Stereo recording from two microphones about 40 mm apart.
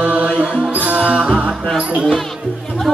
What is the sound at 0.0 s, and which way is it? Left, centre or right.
Music, right.